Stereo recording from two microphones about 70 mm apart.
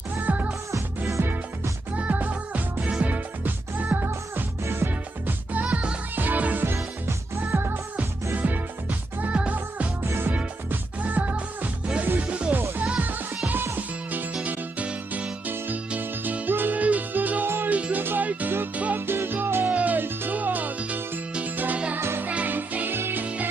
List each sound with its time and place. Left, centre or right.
0.2 s music: right
0.7 s music: right
2.0 s music: right
5.5 s music: right
8.4 s music: right
10.0 s music: right
10.3 s music: right
13.5 s music: right
15.5 s music: right
21.9 s music: right